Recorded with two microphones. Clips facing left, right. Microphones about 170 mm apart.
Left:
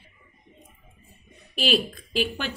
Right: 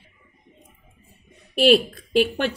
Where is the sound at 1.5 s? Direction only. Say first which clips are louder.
Right 8 dB; 60° right (ahead or behind).